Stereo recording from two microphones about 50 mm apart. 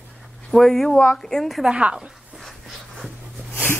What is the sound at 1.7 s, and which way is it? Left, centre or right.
Speech, right.